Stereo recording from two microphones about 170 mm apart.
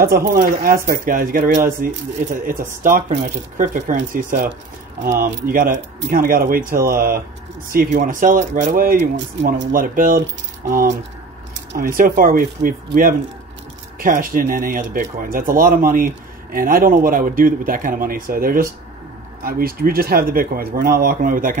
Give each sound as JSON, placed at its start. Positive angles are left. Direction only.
{"t": 0.3, "sound": "speech", "side_deg": -55}
{"t": 5.5, "sound": "speech", "side_deg": -55}
{"t": 9.1, "sound": "speech", "side_deg": -90}
{"t": 9.7, "sound": "speech", "side_deg": -55}